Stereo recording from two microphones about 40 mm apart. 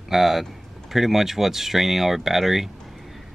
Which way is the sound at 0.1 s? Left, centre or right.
Centre.